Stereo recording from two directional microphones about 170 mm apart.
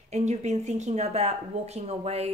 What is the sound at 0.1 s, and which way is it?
Speech, 40° right (ahead or behind).